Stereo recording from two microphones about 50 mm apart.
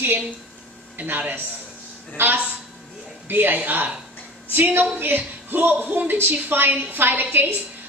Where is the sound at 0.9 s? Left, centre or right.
Right.